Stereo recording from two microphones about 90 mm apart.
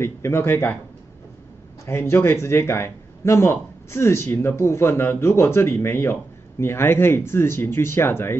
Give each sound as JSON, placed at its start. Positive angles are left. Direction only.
{"t": 0.0, "sound": "a man's voice", "side_deg": 30}
{"t": 1.9, "sound": "a man's voice", "side_deg": 25}